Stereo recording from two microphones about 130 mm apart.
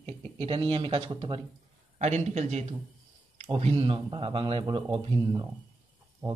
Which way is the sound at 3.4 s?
45° right (ahead or behind).